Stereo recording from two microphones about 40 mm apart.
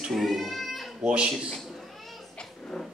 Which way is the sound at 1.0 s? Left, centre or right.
Right.